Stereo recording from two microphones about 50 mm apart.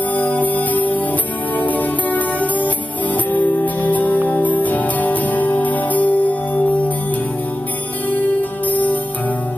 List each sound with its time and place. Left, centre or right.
0.1 s music: left
8.1 s music: left